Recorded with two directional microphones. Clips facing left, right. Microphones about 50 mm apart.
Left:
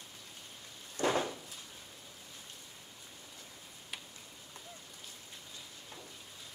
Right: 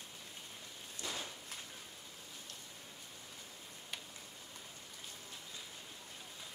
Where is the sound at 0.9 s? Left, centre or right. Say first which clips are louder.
Left 13 dB; left.